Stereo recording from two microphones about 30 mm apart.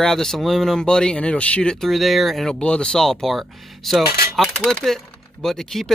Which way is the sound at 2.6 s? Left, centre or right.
Left.